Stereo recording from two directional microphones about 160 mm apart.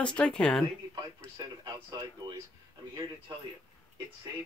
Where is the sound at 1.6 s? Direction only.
25° right (ahead or behind).